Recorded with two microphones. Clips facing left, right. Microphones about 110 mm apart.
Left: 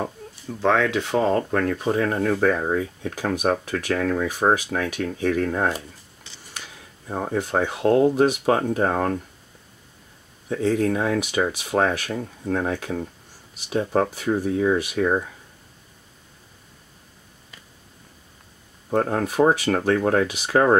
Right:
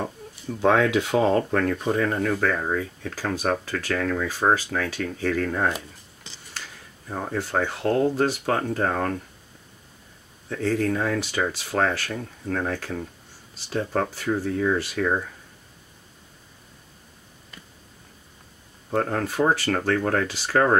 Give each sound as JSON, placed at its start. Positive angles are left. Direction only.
{"t": 0.6, "sound": "speech", "side_deg": -10}
{"t": 10.5, "sound": "speech", "side_deg": 15}
{"t": 18.9, "sound": "speech", "side_deg": 10}